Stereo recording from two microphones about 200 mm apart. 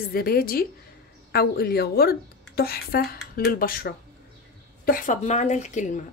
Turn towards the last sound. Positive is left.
turn(degrees=40)  # may be behind; listen again after turning